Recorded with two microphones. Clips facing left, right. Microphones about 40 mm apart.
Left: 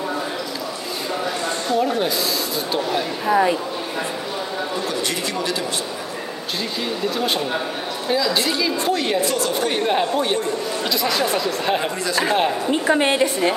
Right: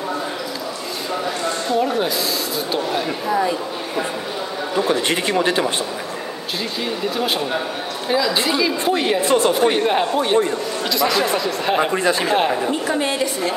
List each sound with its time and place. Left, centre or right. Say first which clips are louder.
1.8 s speech: even; centre
3.3 s a woman's voice: left 3 dB; left
4.8 s speech: right 5 dB; right
7.2 s speech: right 2 dB; centre
9.2 s speech: right 5 dB; right
9.5 s speech: right 4 dB; centre
11.9 s speech: right 6 dB; right
12.3 s speech: left 2 dB; centre
12.8 s a woman's voice: left 3 dB; left